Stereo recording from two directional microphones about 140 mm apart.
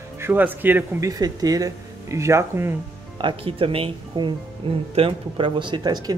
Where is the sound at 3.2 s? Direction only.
40° right (ahead or behind).